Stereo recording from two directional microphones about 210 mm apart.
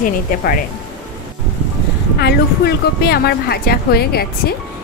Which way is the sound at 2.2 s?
50° left (ahead or behind).